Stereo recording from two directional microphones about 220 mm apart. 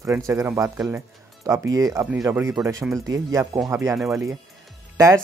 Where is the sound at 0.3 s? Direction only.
15° right (ahead or behind).